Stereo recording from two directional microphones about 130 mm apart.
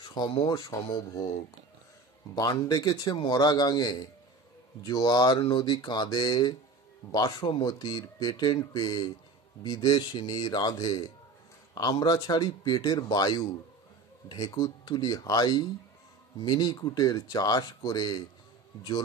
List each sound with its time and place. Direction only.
0.0 s speech: 35° left (ahead or behind)